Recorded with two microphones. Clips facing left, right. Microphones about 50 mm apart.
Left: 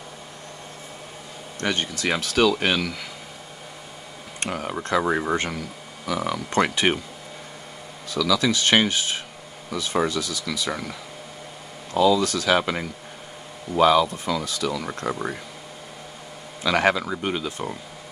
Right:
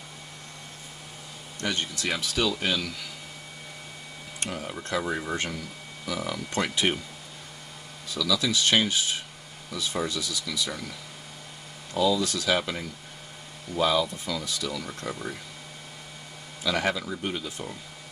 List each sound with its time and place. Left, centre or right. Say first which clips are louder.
1.6 s speech: left 5 dB; left
4.4 s speech: left 6 dB; left
8.1 s speech: left 5 dB; left
16.6 s speech: left 6 dB; left